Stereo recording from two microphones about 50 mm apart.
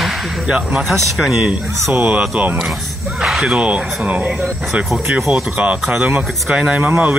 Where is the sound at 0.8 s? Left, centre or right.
Centre.